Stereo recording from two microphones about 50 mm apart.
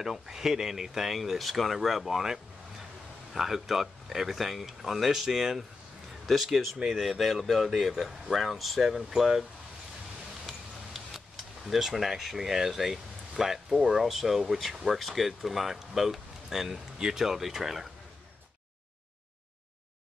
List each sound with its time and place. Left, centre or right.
0.0 s speech: centre
10.4 s a sound: centre
13.3 s speech: centre